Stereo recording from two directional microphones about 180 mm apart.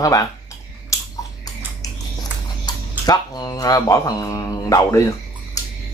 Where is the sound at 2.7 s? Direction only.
25° left (ahead or behind).